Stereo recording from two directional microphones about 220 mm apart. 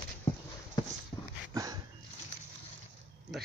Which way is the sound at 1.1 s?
10° left (ahead or behind).